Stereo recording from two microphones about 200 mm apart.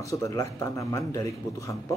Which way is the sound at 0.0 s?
15° left (ahead or behind).